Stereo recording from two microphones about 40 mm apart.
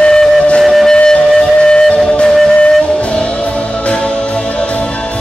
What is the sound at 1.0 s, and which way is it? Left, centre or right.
Music, centre.